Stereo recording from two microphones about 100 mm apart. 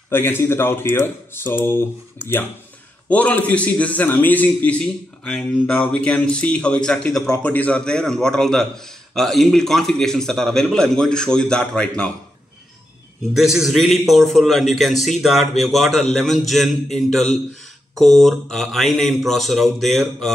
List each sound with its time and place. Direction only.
0.1 s speech: 25° left (ahead or behind)
3.1 s a man's voice: 15° left (ahead or behind)
13.3 s a man's voice: 5° right (ahead or behind)